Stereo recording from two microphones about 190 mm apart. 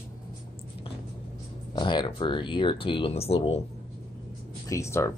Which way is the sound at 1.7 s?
25° left (ahead or behind).